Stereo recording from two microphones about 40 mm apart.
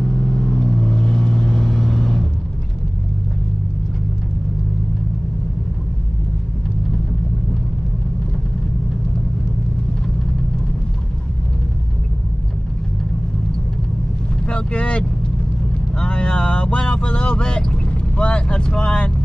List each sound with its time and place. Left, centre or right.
0.5 s vehicle: centre
14.4 s vehicle: left